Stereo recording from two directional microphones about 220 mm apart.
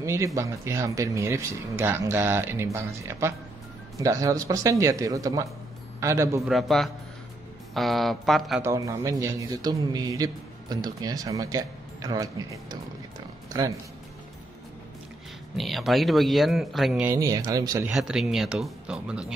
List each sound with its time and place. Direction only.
0.0 s a man's voice: 15° right (ahead or behind)
6.4 s speech: centre (ahead or behind)
8.6 s a man's voice: 15° right (ahead or behind)
15.5 s speech: centre (ahead or behind)
17.8 s speech: centre (ahead or behind)